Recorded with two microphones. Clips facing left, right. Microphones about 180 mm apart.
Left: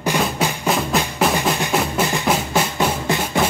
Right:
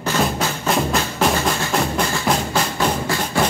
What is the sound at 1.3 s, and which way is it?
Music, 15° left (ahead or behind).